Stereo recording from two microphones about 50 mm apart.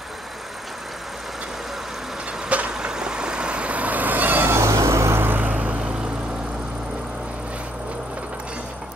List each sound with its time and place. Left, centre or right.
2.7 s vehicle: centre; by 4.5 s right
4.5 s vehicle: right
5.2 s vehicle: right